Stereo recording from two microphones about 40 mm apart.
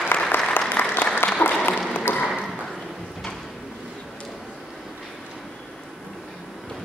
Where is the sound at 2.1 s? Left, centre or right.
Left.